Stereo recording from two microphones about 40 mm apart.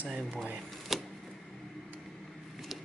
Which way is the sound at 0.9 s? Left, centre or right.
Centre.